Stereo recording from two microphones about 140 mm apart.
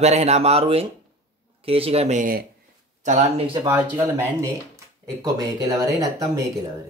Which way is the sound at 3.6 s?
15° right (ahead or behind).